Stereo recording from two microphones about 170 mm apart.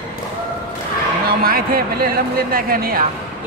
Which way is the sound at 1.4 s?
60° right (ahead or behind).